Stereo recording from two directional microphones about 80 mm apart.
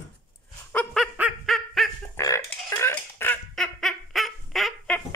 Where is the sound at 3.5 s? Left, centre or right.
Centre.